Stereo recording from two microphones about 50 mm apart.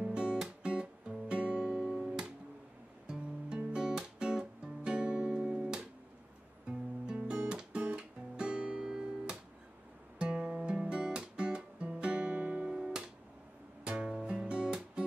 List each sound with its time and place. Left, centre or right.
0.0 s music: centre
3.1 s music: centre
7.1 s music: centre
10.1 s guitar: centre
13.8 s music: centre